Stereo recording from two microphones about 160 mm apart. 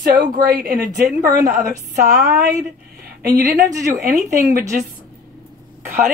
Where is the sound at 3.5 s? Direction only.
20° right (ahead or behind).